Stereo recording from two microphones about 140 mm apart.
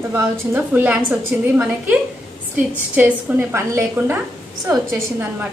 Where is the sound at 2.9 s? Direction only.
10° right (ahead or behind).